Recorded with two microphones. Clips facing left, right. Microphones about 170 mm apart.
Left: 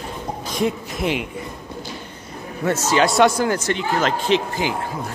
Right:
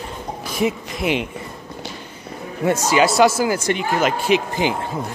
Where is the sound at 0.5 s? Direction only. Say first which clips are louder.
Right 1 dB; 5° right (ahead or behind).